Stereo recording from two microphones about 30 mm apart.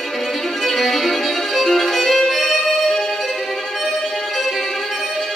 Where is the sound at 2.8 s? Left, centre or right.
Centre.